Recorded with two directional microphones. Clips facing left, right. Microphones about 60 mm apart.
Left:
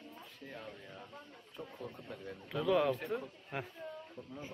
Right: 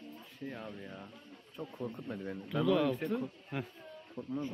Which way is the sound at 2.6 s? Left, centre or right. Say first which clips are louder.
Right 1 dB; centre.